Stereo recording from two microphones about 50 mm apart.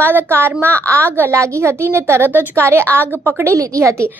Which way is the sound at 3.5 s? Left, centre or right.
Right.